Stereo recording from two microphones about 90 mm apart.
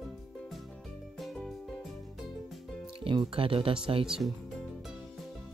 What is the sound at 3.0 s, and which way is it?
Speech, 75° right (ahead or behind).